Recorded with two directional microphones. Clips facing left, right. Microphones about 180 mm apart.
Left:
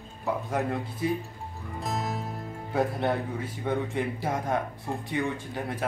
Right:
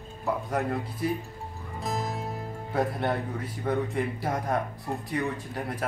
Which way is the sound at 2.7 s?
Centre (ahead or behind).